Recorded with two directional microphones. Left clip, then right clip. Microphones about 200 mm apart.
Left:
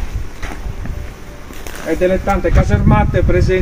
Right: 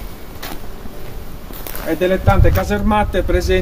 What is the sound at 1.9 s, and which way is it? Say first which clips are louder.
Speech: left 1 dB; 30° left (ahead or behind).